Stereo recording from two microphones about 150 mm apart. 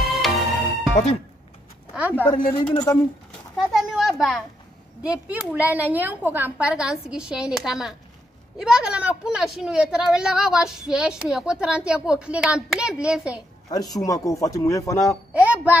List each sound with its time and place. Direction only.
0.0 s music: centre (ahead or behind)
2.0 s speech: 10° right (ahead or behind)
2.5 s speech: 30° left (ahead or behind)
3.6 s a sound: 5° right (ahead or behind)
5.0 s a woman's voice: 10° right (ahead or behind)
13.7 s speech: 25° left (ahead or behind)
15.3 s a woman's voice: 10° right (ahead or behind)